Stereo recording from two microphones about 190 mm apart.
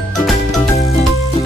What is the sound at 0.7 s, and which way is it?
Music, 35° left (ahead or behind).